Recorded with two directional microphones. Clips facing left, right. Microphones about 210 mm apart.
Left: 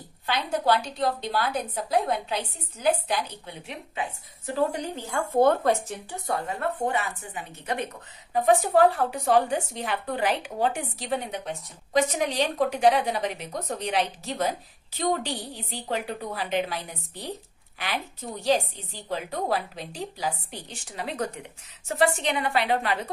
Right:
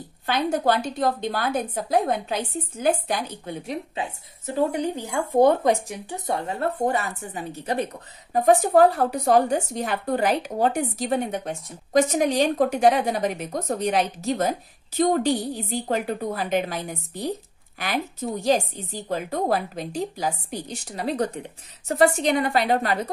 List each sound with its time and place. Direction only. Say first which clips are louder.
0.3 s a woman's voice: right 3 dB; 50° right (ahead or behind); by 4.1 s 35° right (ahead or behind)
4.6 s a woman's voice: right 4 dB; 20° right (ahead or behind); by 22.9 s 40° right (ahead or behind)